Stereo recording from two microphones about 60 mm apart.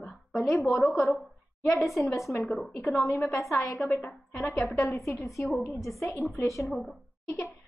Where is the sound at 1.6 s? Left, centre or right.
Left.